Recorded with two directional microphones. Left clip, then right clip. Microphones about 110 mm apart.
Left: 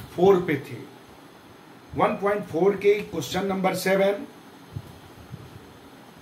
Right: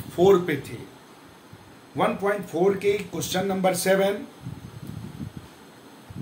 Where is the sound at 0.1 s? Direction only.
55° right (ahead or behind).